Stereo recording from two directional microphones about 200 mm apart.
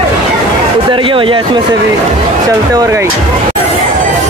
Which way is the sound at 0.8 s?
25° right (ahead or behind).